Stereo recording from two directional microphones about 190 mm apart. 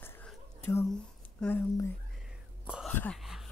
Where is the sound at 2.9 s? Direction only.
5° left (ahead or behind).